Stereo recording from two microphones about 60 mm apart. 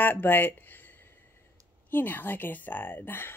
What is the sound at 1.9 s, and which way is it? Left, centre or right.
Speech, left.